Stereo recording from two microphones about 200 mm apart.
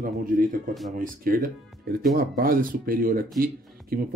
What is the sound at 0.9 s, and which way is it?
Speech, 45° right (ahead or behind).